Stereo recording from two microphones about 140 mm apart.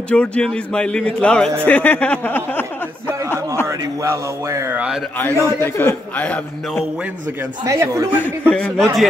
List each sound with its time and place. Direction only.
0.1 s a man's voice: 10° left (ahead or behind)
3.6 s speech: 20° right (ahead or behind)
5.2 s a man's voice: 20° left (ahead or behind)
7.6 s speech: 20° right (ahead or behind)
8.5 s a man's voice: 5° left (ahead or behind)